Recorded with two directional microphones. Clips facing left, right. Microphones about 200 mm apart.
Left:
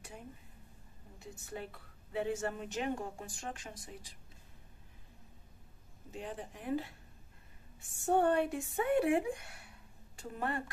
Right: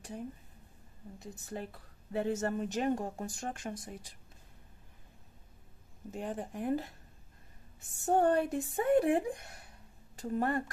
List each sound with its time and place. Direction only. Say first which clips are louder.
1.2 s a woman's voice: right 2 dB; 40° right (ahead or behind)
6.1 s speech: right 5 dB; 50° right (ahead or behind)
8.0 s a woman's voice: right 2 dB; 40° right (ahead or behind)